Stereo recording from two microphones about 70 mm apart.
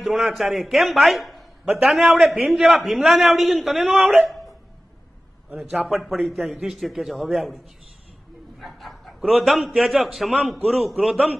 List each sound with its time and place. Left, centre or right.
0.0 s a man's voice: centre
5.6 s a man's voice: centre